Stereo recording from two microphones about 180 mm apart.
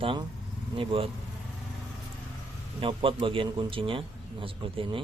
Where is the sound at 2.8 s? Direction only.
30° right (ahead or behind).